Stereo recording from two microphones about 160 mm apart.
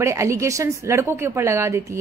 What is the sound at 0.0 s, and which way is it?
A woman's voice, 20° right (ahead or behind).